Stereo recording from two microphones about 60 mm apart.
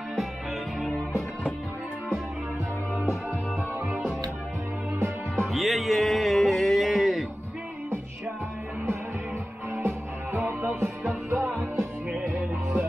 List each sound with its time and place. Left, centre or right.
5.3 s music: centre
9.8 s music: right
11.1 s music: right